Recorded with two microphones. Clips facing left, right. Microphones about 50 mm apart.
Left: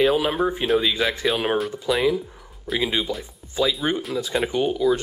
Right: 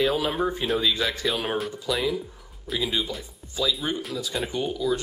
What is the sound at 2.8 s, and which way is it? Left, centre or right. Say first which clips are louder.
Speech: left 3 dB; left.